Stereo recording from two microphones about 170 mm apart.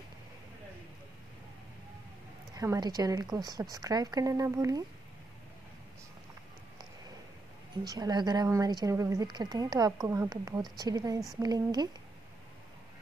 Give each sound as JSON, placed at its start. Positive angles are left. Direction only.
{"t": 2.5, "sound": "speech", "side_deg": -20}
{"t": 7.8, "sound": "speech", "side_deg": -20}